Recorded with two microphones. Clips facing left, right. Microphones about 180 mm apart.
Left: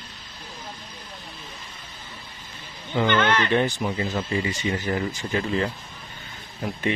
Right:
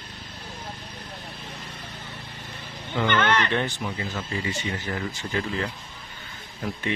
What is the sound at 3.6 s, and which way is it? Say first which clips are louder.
Speech: left 5 dB; 40° left (ahead or behind).